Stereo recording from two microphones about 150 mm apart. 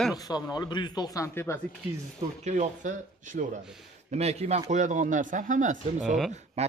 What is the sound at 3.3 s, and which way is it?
Speech, 80° right.